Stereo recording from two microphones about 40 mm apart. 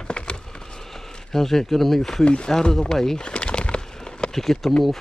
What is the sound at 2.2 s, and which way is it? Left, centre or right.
Speech, left.